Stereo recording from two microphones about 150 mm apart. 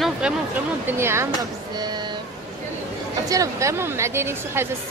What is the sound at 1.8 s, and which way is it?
Speech, 30° right (ahead or behind).